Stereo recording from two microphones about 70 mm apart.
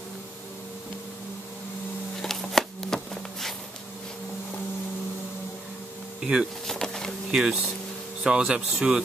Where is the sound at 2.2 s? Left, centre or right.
Centre.